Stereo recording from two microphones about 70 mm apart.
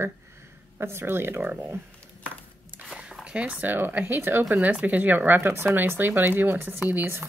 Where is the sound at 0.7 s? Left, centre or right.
Right.